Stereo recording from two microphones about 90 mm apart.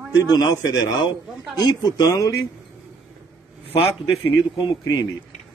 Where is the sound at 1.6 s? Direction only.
45° left (ahead or behind).